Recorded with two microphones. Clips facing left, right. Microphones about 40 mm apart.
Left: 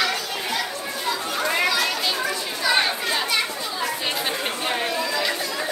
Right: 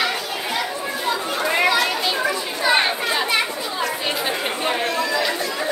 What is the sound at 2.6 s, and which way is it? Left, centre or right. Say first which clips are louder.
Chatter: right 3 dB; right.